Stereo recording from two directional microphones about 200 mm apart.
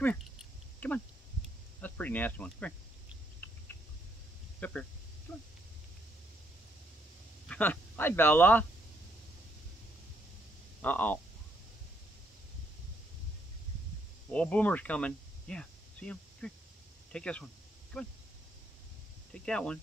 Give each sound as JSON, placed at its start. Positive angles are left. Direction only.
{"t": 0.0, "sound": "cricket", "side_deg": 0}
{"t": 1.8, "sound": "speech", "side_deg": 10}
{"t": 4.6, "sound": "speech", "side_deg": 10}
{"t": 7.4, "sound": "speech", "side_deg": 5}
{"t": 10.8, "sound": "speech", "side_deg": 10}
{"t": 14.3, "sound": "speech", "side_deg": 5}
{"t": 19.3, "sound": "speech", "side_deg": 5}